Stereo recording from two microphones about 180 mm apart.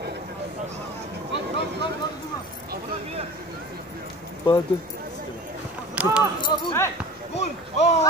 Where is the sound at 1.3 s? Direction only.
70° right (ahead or behind).